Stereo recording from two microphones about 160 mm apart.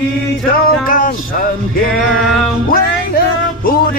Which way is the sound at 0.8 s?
60° left (ahead or behind).